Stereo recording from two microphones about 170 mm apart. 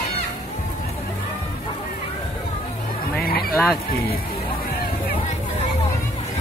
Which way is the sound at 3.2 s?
60° left (ahead or behind).